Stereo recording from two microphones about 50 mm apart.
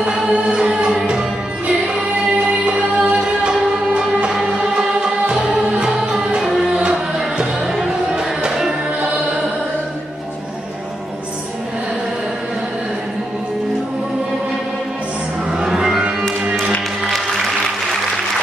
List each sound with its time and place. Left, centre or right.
0.0 s music: centre
2.6 s music: right; by 6.7 s centre
6.7 s music: centre
15.5 s music: centre